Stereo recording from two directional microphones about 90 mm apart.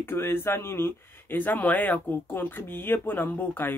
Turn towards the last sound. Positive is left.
turn(degrees=20)  # may be behind; listen again after turning